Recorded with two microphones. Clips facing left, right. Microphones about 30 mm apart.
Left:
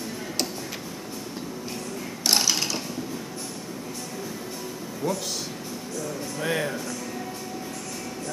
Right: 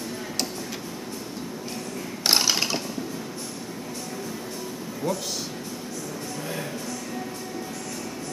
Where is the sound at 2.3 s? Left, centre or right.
Centre.